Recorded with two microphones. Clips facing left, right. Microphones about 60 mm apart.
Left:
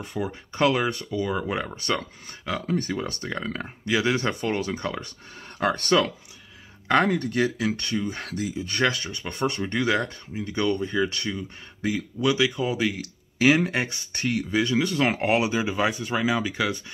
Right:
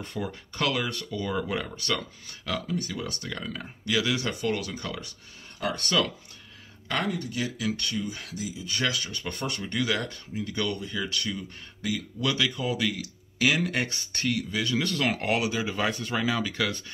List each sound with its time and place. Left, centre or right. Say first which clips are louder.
0.0 s speech: left 4 dB; centre
0.5 s speech: left 7 dB; left
2.6 s speech: left 5 dB; left
5.6 s speech: left 5 dB; left
7.1 s speech: left 7 dB; left
15.7 s speech: left 3 dB; centre